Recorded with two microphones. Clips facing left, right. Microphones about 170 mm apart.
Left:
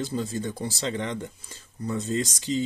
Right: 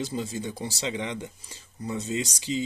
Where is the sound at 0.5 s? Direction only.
50° left (ahead or behind).